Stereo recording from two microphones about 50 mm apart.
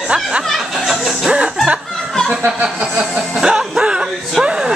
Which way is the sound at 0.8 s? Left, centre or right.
Centre.